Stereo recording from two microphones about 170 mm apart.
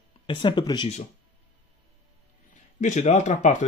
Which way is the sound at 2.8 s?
45° left (ahead or behind).